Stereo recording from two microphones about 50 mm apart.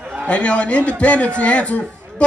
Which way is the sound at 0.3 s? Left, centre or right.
Left.